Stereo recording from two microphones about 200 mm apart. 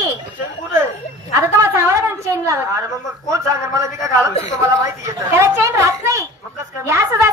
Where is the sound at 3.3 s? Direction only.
15° right (ahead or behind).